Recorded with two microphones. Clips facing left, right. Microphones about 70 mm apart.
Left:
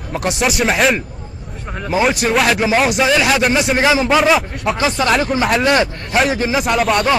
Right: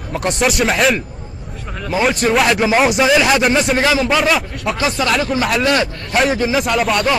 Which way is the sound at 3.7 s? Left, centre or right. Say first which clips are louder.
Left 1 dB; centre.